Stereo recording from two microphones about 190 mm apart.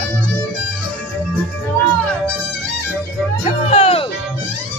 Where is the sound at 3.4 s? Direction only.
30° left (ahead or behind).